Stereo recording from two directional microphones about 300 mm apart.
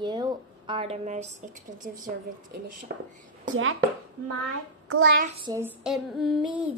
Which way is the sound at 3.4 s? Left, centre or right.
Right.